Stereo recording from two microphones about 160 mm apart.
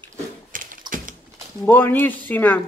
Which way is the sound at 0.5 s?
60° right (ahead or behind).